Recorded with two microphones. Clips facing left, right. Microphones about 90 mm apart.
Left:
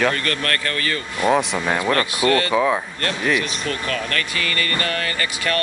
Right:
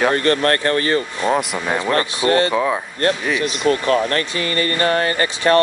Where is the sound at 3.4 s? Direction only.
30° right (ahead or behind).